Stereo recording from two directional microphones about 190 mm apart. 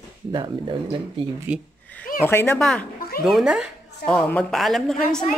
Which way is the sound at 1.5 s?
5° right (ahead or behind).